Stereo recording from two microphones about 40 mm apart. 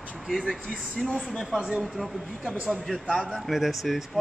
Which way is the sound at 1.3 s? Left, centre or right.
Centre.